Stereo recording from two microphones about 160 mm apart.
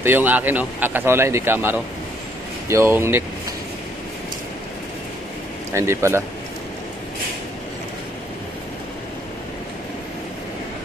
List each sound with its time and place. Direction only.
0.0 s a man's voice: 10° right (ahead or behind)
5.7 s a man's voice: 15° right (ahead or behind)